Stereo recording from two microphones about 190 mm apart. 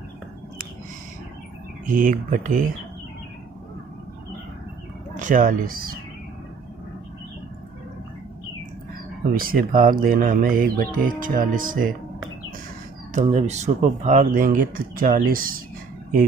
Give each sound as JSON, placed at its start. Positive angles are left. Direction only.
{"t": 1.9, "sound": "speech", "side_deg": -45}
{"t": 5.1, "sound": "speech", "side_deg": -45}
{"t": 9.3, "sound": "speech", "side_deg": -50}
{"t": 13.1, "sound": "speech", "side_deg": -35}